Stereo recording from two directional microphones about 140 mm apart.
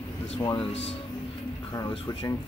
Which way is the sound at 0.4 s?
30° left (ahead or behind).